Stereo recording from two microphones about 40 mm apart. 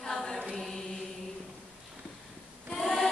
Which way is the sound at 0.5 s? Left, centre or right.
Centre.